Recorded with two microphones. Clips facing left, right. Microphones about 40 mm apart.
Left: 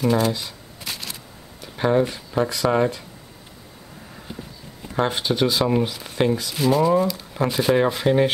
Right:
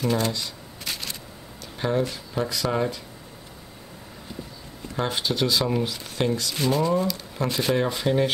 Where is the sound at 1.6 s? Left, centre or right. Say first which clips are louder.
Left 5 dB; centre.